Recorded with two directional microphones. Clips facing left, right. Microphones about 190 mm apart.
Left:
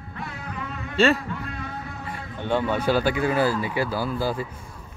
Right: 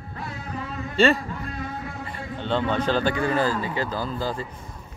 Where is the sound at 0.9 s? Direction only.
5° left (ahead or behind).